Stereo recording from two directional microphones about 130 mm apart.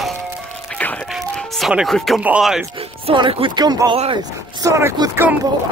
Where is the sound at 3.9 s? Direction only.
45° right (ahead or behind).